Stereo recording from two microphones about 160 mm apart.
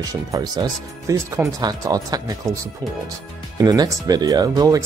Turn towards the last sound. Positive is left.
turn(degrees=-25)  # may be behind; listen again after turning